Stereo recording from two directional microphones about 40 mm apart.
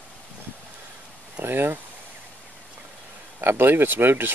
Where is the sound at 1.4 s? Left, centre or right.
Right.